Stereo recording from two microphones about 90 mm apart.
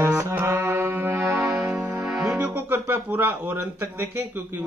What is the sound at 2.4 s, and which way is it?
Speech, 25° right (ahead or behind).